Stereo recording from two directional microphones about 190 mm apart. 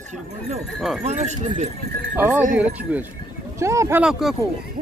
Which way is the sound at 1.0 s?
35° right (ahead or behind).